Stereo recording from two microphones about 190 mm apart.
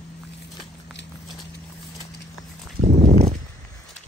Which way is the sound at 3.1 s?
35° right (ahead or behind).